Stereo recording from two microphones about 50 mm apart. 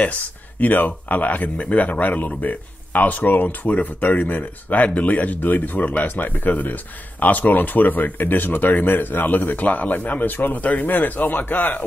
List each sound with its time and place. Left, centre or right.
0.0 s speech: left